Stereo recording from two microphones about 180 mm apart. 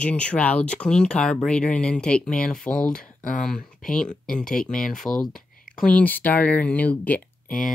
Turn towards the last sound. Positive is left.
turn(degrees=10)  # may be behind; listen again after turning